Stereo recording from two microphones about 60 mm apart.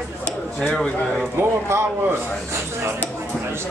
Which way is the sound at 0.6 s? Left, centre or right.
Centre.